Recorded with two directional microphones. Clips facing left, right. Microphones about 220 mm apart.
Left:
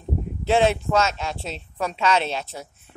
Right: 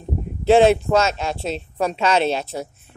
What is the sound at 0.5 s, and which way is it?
Speech, 35° right (ahead or behind).